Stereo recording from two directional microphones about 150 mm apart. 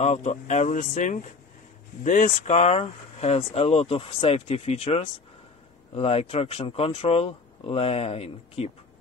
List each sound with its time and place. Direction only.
0.0 s speech: 45° left (ahead or behind)